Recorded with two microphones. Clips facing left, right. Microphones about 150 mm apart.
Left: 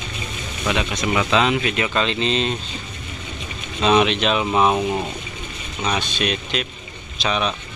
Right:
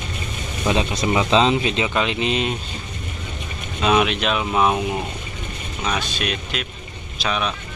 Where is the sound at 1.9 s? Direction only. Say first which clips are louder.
Even; 10° right (ahead or behind).